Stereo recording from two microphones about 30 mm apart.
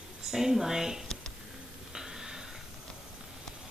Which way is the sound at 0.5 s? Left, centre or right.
Centre.